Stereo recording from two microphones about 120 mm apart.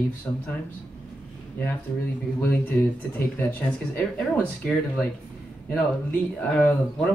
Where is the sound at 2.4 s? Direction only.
15° left (ahead or behind).